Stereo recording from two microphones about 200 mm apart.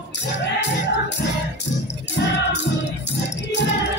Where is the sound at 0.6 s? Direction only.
60° left (ahead or behind).